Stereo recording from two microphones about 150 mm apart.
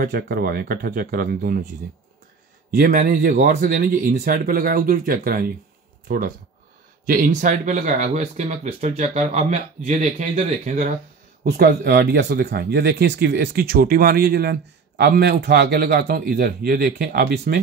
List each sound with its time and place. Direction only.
0.0 s speech: 90° right
2.7 s speech: 65° right (ahead or behind)
11.4 s speech: 90° right